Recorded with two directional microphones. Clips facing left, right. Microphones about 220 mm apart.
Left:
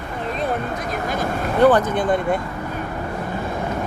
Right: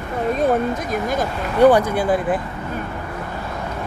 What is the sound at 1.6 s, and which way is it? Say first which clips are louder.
Speech: right 2 dB; 10° right (ahead or behind).